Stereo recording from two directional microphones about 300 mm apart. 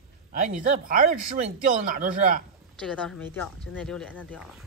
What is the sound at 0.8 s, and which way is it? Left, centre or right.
Speech, right.